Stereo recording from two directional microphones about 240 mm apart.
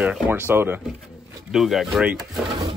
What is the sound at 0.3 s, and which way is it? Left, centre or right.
Speech, centre.